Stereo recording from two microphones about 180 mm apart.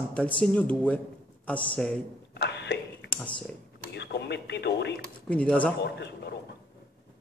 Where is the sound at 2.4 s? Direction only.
70° left (ahead or behind).